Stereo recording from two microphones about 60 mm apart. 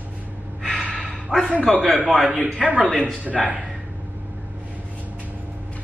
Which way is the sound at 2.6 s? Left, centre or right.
Centre.